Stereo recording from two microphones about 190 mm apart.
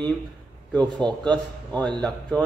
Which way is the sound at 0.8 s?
25° right (ahead or behind).